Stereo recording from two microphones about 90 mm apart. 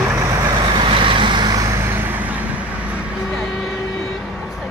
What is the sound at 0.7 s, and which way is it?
Vehicle, 65° right (ahead or behind).